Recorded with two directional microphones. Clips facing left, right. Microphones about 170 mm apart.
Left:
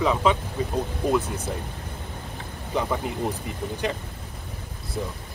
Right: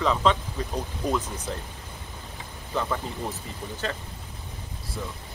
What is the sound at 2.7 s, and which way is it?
Speech, 15° left (ahead or behind).